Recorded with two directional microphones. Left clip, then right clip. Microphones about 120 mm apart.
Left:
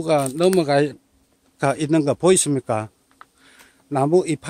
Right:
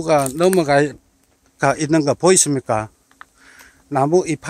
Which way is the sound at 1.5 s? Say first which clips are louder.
Right 3 dB; 5° left (ahead or behind).